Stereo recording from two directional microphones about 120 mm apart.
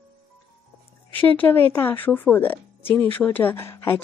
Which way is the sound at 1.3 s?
15° left (ahead or behind).